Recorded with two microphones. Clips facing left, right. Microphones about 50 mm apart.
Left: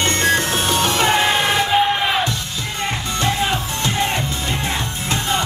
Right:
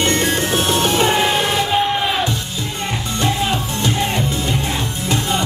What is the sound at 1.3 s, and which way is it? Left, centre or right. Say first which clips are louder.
Crowd: left 1 dB; centre.